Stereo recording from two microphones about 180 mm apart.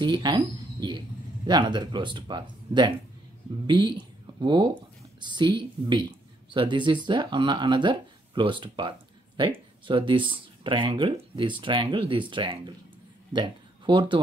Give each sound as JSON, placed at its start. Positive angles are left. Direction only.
{"t": 0.0, "sound": "speech", "side_deg": -25}